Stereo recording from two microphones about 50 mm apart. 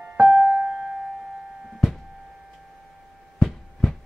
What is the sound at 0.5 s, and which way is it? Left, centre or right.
Keyboard, centre.